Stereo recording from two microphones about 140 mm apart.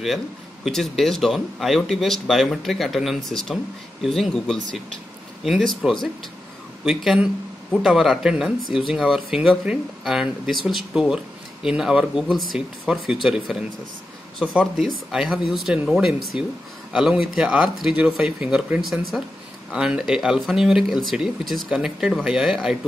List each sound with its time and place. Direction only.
0.7 s speech: centre (ahead or behind)
6.8 s speech: centre (ahead or behind)